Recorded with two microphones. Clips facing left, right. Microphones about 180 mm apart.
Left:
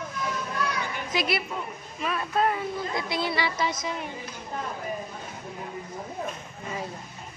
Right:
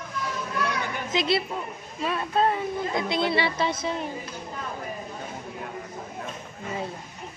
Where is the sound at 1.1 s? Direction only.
25° right (ahead or behind).